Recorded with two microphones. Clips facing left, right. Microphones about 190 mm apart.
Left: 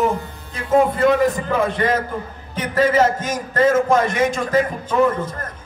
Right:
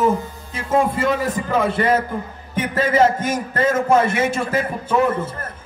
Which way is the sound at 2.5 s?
10° right (ahead or behind).